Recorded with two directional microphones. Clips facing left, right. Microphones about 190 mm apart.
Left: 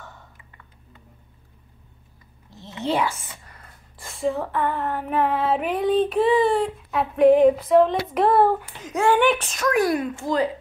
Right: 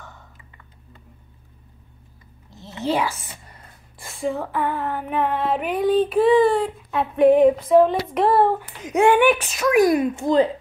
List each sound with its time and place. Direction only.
2.8 s speech: 5° right (ahead or behind)
4.0 s female singing: centre (ahead or behind)
8.8 s speech: 15° right (ahead or behind)
9.3 s speech: 5° right (ahead or behind); by 10.5 s 20° right (ahead or behind)